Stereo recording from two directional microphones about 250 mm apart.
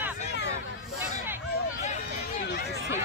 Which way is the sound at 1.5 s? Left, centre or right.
Left.